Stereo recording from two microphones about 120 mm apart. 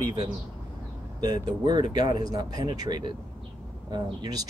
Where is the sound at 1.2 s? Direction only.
35° right (ahead or behind).